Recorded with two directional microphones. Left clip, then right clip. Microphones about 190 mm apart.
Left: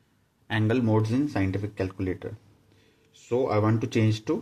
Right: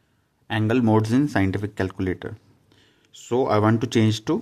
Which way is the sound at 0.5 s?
20° right (ahead or behind).